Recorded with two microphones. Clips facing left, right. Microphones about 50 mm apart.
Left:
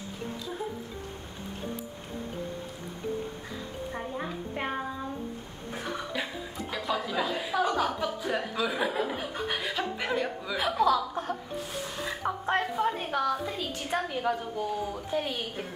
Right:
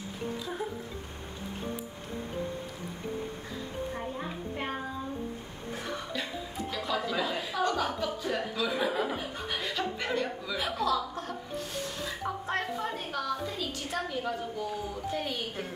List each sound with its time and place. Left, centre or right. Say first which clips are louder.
6.9 s speech: left 2 dB; centre
10.6 s a woman's voice: left 5 dB; left
12.2 s a woman's voice: left 5 dB; left
15.1 s speech: left 5 dB; centre